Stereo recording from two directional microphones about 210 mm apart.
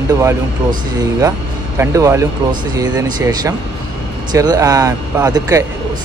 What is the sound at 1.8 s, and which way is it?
Speech, 15° right (ahead or behind).